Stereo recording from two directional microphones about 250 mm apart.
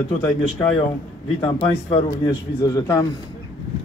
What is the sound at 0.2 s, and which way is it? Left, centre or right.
A man's voice, centre.